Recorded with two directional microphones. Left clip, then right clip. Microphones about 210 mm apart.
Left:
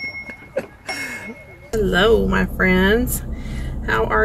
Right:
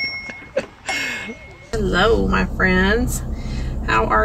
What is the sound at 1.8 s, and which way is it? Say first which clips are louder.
Speech: left 1 dB; 20° left (ahead or behind).